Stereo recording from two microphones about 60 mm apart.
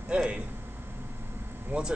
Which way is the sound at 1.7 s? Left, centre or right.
Right.